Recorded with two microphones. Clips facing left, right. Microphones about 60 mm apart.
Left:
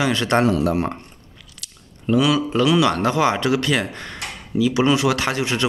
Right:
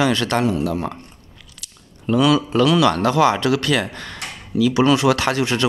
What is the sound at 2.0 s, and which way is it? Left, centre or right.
Speech, centre.